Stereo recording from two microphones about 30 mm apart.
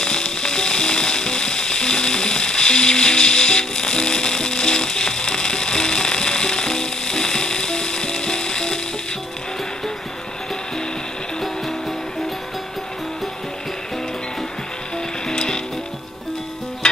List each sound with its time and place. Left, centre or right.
0.0 s music: left
15.2 s music: left
16.8 s music: left